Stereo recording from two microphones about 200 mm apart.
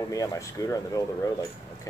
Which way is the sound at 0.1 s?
15° left (ahead or behind).